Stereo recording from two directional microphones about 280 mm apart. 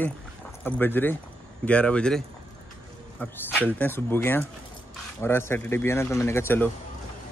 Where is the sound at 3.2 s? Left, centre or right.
Centre.